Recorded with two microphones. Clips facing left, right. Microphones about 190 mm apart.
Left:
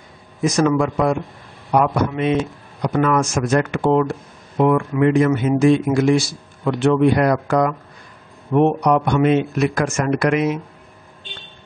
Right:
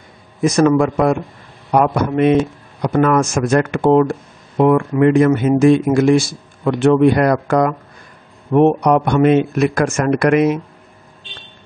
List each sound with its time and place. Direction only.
0.4 s a man's voice: 55° right (ahead or behind)